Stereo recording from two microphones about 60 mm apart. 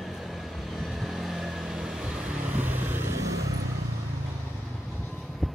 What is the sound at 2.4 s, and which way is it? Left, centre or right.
Vehicle, right.